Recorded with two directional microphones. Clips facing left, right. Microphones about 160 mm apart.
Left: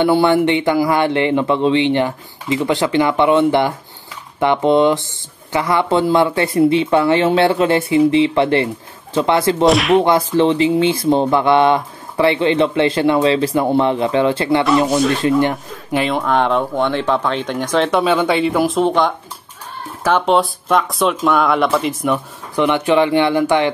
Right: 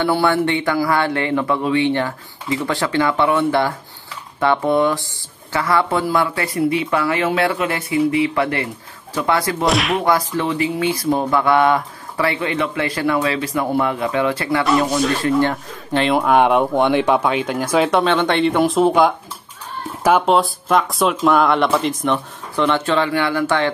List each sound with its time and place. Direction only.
0.0 s speech: 20° left (ahead or behind)
9.7 s speech: centre (ahead or behind)
10.0 s speech: 25° left (ahead or behind); by 16.1 s 10° left (ahead or behind)
16.1 s speech: 10° right (ahead or behind)
18.0 s speech: 5° left (ahead or behind)
22.6 s speech: 15° left (ahead or behind)